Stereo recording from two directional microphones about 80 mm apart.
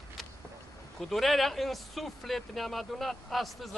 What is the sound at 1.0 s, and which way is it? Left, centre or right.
Speech, centre.